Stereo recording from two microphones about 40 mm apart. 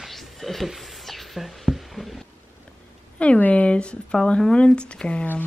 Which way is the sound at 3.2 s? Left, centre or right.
Left.